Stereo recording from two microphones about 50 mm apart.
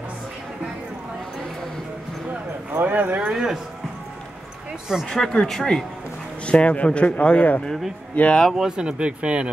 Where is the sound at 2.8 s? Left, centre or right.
Right.